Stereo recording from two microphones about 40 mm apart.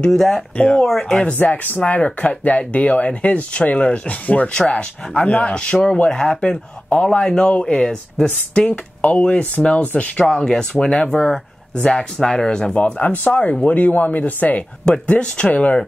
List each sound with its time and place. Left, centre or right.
0.1 s speech: centre
0.6 s speech: centre
1.2 s speech: left
4.5 s speech: left
6.0 s speech: centre
6.9 s speech: left
10.3 s speech: centre
11.8 s speech: left
12.2 s speech: centre
12.7 s speech: left
13.7 s speech: left
15.0 s speech: left